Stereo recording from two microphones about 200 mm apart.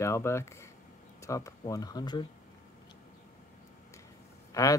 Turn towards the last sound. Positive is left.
turn(degrees=15)  # may be behind; listen again after turning